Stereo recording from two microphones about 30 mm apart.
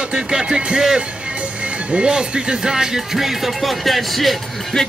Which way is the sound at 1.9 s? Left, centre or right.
Right.